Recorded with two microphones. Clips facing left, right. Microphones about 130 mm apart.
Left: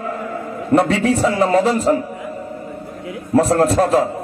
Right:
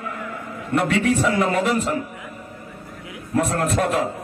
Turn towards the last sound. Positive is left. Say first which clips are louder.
# left 7 dB
turn(degrees=35)  # may be behind; listen again after turning